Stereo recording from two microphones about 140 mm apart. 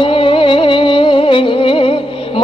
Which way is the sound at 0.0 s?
40° left (ahead or behind).